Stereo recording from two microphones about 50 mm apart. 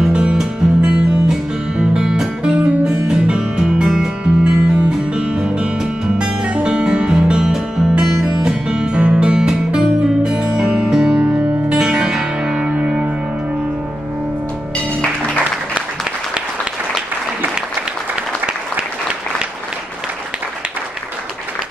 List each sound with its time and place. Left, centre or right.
0.1 s music: centre
2.6 s music: right
11.7 s music: centre
15.0 s music: left